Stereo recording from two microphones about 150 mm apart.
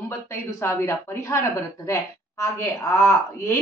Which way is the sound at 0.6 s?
15° left (ahead or behind).